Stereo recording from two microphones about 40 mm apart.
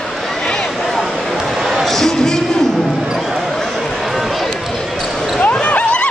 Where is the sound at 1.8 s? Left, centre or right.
Centre.